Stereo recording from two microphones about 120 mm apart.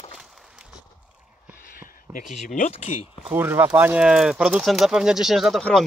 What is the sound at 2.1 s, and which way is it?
Speech, 80° left.